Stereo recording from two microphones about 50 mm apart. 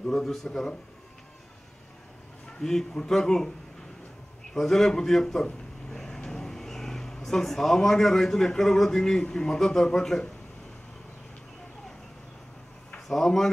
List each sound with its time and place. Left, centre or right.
0.0 s a man's voice: centre
2.6 s a man's voice: centre
4.6 s a man's voice: centre
13.1 s a man's voice: centre